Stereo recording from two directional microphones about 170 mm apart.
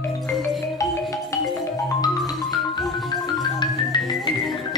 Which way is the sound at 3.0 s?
25° left (ahead or behind).